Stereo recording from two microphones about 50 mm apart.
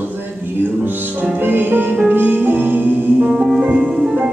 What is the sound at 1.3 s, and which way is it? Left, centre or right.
Music, right.